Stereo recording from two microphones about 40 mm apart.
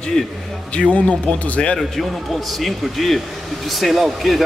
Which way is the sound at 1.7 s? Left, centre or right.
Centre.